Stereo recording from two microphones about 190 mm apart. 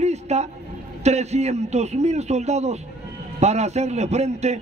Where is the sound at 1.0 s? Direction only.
35° right (ahead or behind).